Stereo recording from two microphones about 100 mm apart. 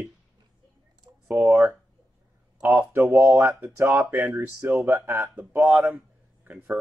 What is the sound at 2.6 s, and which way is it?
Speech, 25° right (ahead or behind).